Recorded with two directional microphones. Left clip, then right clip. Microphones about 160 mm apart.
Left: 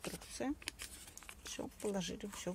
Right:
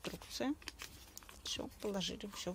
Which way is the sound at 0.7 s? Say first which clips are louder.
Even; 25° left (ahead or behind).